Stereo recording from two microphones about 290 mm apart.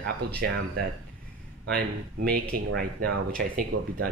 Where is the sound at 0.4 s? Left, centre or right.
Right.